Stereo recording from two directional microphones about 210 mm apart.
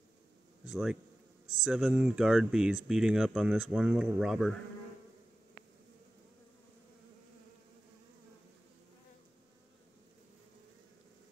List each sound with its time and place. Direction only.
0.7 s speech: 5° right (ahead or behind)